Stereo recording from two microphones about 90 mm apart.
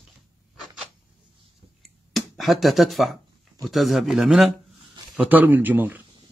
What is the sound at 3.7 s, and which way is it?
Speech, centre (ahead or behind).